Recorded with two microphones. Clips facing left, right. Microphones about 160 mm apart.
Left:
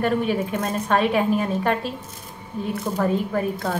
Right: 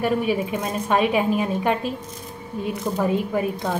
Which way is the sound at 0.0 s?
10° right (ahead or behind).